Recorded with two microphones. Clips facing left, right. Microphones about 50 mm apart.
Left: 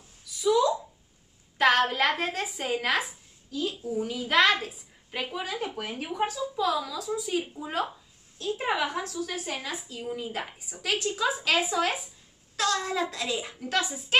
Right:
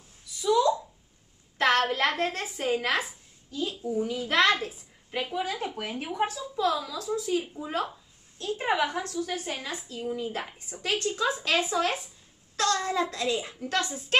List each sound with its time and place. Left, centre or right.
0.4 s a sound: centre
1.6 s a woman's voice: centre
7.1 s speech: centre
7.9 s a woman's voice: centre